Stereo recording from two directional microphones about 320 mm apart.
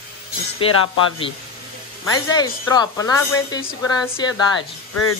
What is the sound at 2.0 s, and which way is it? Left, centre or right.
A woman's voice, centre.